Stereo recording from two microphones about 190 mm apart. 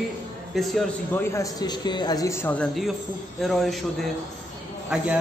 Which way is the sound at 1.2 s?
15° left (ahead or behind).